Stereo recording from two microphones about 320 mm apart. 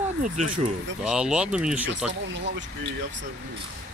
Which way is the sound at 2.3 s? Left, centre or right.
Right.